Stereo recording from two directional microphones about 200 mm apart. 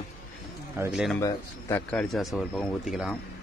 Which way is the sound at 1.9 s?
Centre (ahead or behind).